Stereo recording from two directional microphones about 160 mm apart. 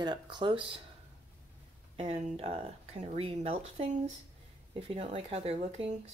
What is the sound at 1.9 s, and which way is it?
Speech, 40° right (ahead or behind).